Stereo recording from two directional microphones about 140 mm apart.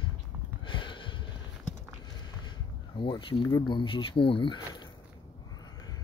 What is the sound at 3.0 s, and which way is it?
Speech, 35° left (ahead or behind).